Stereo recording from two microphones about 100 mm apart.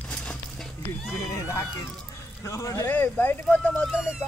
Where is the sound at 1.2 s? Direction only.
30° left (ahead or behind).